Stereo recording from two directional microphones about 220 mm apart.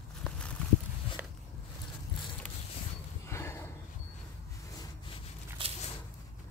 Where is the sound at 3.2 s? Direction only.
10° left (ahead or behind).